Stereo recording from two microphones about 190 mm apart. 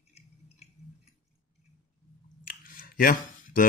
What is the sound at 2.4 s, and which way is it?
Chewing, 45° left (ahead or behind).